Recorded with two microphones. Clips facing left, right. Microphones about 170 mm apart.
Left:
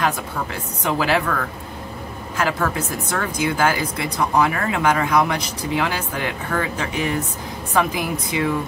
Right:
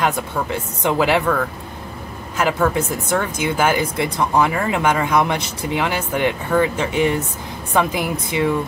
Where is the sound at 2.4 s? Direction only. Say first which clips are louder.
Right 4 dB; 20° right (ahead or behind).